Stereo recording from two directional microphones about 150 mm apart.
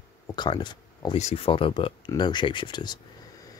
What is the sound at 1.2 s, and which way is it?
Speech, 50° left (ahead or behind).